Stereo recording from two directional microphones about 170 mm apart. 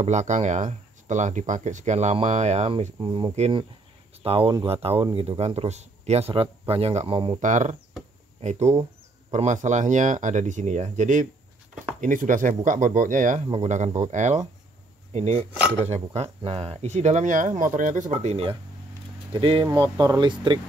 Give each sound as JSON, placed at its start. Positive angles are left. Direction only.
{"t": 0.0, "sound": "speech", "side_deg": -45}
{"t": 3.3, "sound": "speech", "side_deg": -40}
{"t": 7.4, "sound": "speech", "side_deg": -45}